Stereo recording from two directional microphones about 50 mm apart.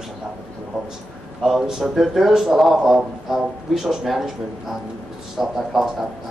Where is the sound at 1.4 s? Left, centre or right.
Centre.